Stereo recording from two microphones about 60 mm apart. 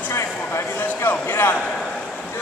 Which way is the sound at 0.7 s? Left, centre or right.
Left.